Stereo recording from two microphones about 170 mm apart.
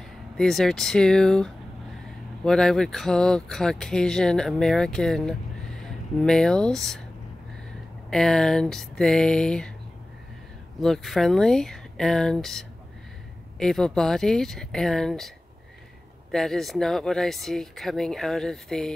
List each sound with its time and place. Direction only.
0.4 s speech: centre (ahead or behind)
8.1 s speech: 5° left (ahead or behind)
10.8 s speech: centre (ahead or behind)